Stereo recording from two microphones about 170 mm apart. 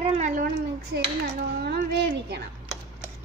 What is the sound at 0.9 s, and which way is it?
Speech, 70° right (ahead or behind).